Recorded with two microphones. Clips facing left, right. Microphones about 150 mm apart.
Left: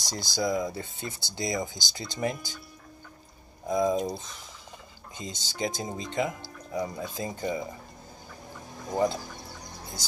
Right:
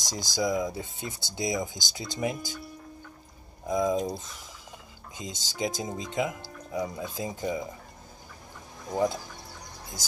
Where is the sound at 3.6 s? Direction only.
5° left (ahead or behind).